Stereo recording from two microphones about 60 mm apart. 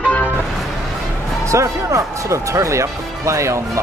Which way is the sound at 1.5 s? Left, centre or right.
Right.